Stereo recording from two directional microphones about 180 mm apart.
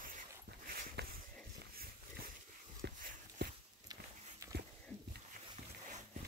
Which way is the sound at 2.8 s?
65° right (ahead or behind).